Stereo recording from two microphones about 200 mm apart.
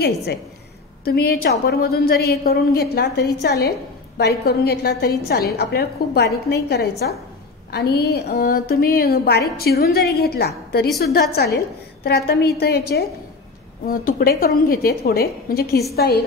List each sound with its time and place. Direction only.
0.0 s a woman's voice: 55° left (ahead or behind)